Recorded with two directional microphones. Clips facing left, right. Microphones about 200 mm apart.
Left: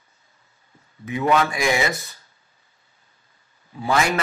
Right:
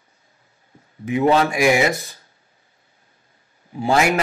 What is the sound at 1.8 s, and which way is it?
Speech, 25° right (ahead or behind).